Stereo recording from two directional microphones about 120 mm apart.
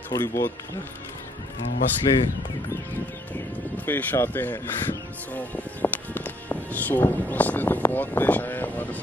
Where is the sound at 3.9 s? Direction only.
15° left (ahead or behind).